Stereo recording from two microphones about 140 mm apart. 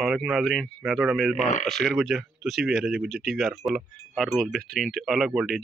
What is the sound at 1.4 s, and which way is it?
Speech, 60° left (ahead or behind).